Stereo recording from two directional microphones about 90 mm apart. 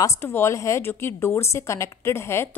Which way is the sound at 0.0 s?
30° left (ahead or behind).